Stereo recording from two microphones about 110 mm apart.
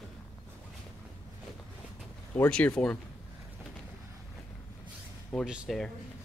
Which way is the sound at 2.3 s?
15° left (ahead or behind).